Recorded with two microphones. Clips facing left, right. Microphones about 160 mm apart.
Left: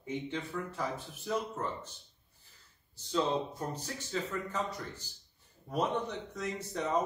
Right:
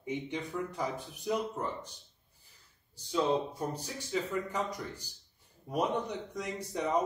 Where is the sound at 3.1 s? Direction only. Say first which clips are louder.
Right 2 dB; 10° right (ahead or behind).